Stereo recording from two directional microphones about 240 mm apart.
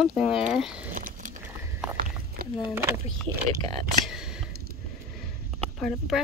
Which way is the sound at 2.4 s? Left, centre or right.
Right.